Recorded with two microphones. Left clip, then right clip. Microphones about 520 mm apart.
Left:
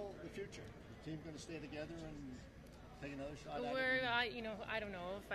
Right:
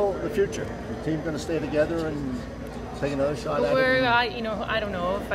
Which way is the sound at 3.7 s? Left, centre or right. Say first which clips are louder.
Right 16 dB; left.